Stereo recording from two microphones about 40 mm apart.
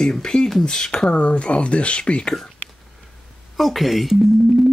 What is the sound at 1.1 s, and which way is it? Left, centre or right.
Speech, left.